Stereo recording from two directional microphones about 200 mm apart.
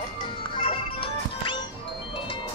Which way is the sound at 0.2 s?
25° left (ahead or behind).